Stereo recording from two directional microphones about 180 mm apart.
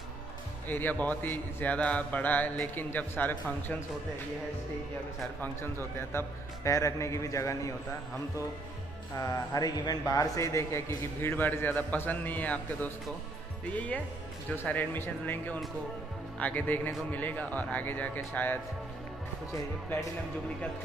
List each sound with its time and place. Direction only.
0.7 s a man's voice: 10° left (ahead or behind)
5.4 s a man's voice: 10° left (ahead or behind)
9.2 s a man's voice: 20° left (ahead or behind)